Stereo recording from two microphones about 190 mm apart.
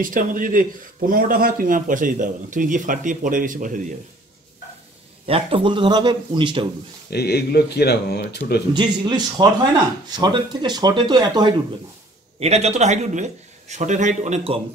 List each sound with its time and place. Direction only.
0.0 s speech: 45° right (ahead or behind)
5.2 s speech: 30° right (ahead or behind)
7.1 s speech: 60° left (ahead or behind)
8.7 s speech: 20° right (ahead or behind)
12.4 s speech: 35° right (ahead or behind)